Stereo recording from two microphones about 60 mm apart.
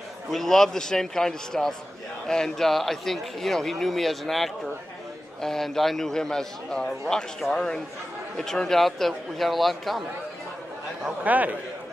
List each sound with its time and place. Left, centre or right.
0.3 s a man's voice: centre
11.2 s a man's voice: right